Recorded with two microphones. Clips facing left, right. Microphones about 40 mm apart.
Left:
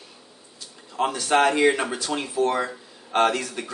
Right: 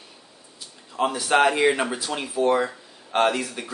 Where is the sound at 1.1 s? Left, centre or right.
Centre.